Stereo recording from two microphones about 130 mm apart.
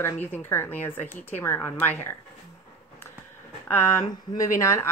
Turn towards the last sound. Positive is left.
turn(degrees=20)  # may be behind; listen again after turning